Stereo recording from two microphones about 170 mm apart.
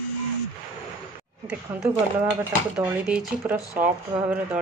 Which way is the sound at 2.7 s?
5° right (ahead or behind).